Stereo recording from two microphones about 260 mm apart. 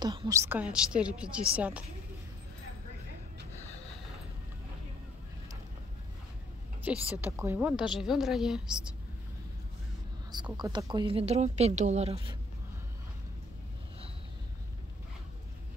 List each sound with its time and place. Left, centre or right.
0.0 s speech: centre
6.8 s speech: centre
10.3 s speech: centre